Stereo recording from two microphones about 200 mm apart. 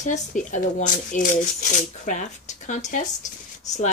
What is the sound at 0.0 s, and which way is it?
Speech, 40° left (ahead or behind).